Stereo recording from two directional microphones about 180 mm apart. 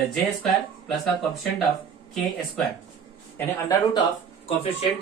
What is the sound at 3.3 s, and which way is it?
Speech, 10° left (ahead or behind).